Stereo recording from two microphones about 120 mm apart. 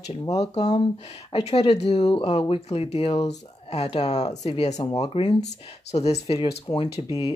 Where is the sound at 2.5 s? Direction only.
55° left (ahead or behind).